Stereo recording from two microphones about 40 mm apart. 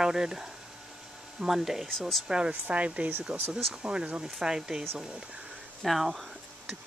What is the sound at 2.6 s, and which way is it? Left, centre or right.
Speech, right.